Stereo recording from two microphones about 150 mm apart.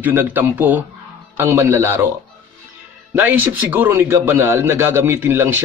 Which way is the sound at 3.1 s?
10° right (ahead or behind).